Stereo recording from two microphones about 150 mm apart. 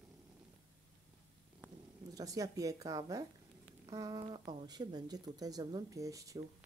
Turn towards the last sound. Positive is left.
turn(degrees=-20)  # may be behind; listen again after turning